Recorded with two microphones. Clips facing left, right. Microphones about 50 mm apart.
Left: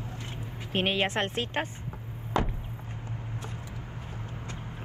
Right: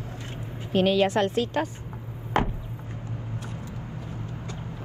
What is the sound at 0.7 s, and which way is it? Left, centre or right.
A woman's voice, left.